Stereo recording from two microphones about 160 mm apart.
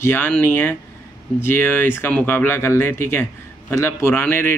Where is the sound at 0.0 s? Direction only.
15° left (ahead or behind).